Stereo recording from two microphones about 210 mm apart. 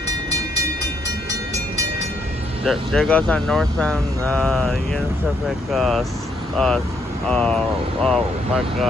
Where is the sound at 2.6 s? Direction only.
Centre (ahead or behind).